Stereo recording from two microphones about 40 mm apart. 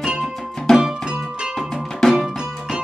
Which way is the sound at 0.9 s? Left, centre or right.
Centre.